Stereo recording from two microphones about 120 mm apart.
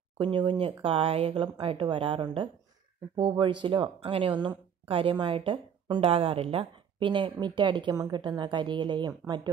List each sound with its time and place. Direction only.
0.2 s speech: 40° right (ahead or behind)